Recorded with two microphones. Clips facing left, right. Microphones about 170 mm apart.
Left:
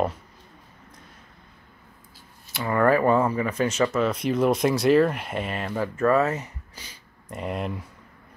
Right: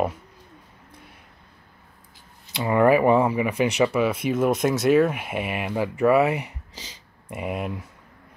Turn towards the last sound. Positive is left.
turn(degrees=-5)  # may be behind; listen again after turning